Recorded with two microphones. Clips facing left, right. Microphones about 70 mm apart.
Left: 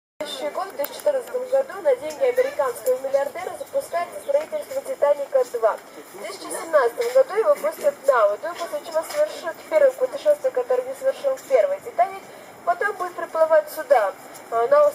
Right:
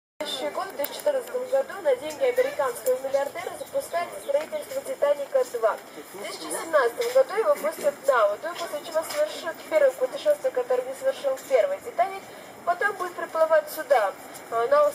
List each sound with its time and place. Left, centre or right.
0.2 s speech: centre
3.1 s speech: centre
6.2 s speech: centre